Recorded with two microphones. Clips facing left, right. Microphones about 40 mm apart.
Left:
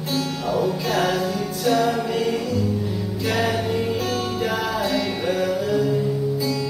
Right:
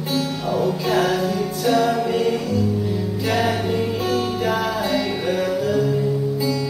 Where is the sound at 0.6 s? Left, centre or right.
Centre.